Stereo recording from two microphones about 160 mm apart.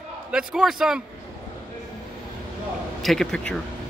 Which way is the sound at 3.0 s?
Centre (ahead or behind).